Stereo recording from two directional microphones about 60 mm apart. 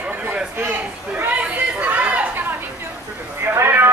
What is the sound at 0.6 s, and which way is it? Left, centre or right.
Chatter, right.